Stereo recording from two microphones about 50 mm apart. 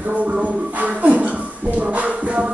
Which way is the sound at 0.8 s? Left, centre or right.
Right.